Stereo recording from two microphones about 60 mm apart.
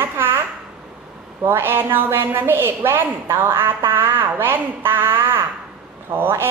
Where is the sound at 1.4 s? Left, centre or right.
Right.